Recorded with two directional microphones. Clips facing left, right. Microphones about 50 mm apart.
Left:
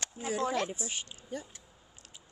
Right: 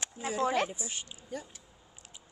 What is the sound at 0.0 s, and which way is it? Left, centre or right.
Speech, right.